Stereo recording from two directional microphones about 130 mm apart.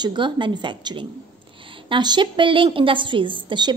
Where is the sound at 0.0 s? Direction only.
40° right (ahead or behind).